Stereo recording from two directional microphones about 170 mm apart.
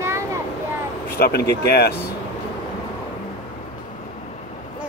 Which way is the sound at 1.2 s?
70° left (ahead or behind).